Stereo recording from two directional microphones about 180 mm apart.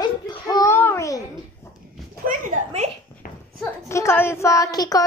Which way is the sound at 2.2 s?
45° right (ahead or behind).